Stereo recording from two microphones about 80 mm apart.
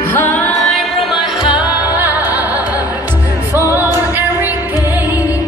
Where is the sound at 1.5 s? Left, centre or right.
Centre.